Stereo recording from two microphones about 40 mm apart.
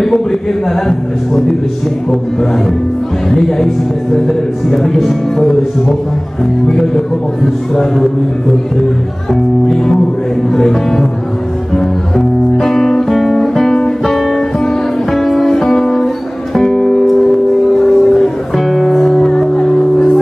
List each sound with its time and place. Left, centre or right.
3.3 s speech: centre
7.7 s speech: centre
11.7 s music: centre
17.0 s music: centre
19.1 s music: centre